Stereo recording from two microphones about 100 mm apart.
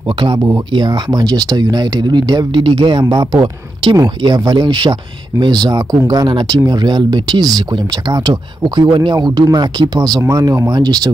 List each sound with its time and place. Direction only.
0.7 s speech: 50° right (ahead or behind)